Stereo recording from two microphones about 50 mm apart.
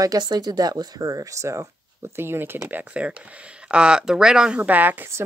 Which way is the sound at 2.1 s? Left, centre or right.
Right.